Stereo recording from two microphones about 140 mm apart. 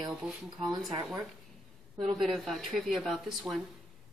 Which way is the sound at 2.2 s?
Centre (ahead or behind).